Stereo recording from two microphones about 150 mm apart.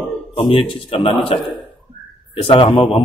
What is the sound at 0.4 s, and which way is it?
Speech, 35° left (ahead or behind).